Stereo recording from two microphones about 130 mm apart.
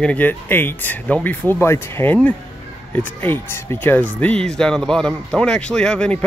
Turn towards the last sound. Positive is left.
turn(degrees=5)  # may be behind; listen again after turning